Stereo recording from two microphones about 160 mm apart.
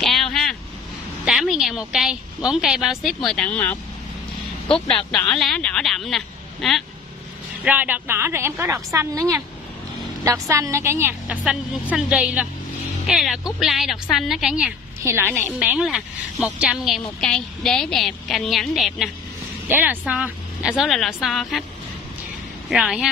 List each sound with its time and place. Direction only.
0.0 s vehicle: 5° left (ahead or behind)
1.2 s a woman's voice: 5° right (ahead or behind)
5.3 s a woman's voice: 5° left (ahead or behind)
7.6 s a woman's voice: 10° right (ahead or behind)
10.2 s a woman's voice: 20° right (ahead or behind); by 14.7 s 5° right (ahead or behind)
15.0 s a woman's voice: 15° right (ahead or behind); by 19.0 s centre (ahead or behind)
19.7 s a woman's voice: 10° right (ahead or behind)
22.7 s a woman's voice: 5° right (ahead or behind)